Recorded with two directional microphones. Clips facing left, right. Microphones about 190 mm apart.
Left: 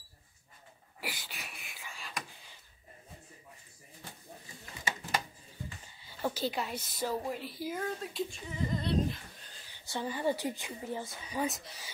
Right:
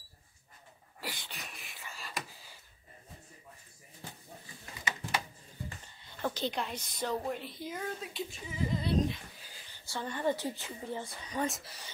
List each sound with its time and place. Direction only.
1.0 s a sound: 5° left (ahead or behind)
6.0 s a woman's voice: 5° left (ahead or behind)
10.0 s speech: 10° left (ahead or behind)